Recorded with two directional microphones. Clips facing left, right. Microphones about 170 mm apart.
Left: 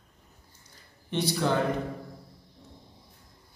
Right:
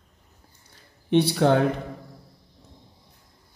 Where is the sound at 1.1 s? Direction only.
60° right (ahead or behind).